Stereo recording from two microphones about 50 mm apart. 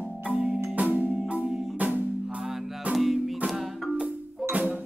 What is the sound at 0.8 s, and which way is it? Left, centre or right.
Marimba, right.